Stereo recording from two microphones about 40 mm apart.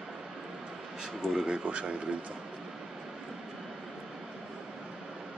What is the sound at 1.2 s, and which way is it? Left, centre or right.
Speech, centre.